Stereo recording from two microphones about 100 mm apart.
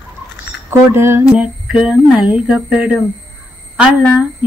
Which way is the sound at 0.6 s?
25° right (ahead or behind).